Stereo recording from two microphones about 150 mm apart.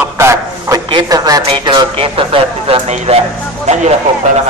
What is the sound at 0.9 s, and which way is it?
Speech, 30° right (ahead or behind).